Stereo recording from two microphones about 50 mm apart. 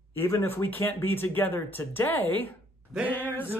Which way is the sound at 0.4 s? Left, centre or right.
Left.